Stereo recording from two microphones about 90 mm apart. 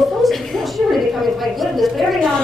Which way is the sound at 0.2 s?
Centre (ahead or behind).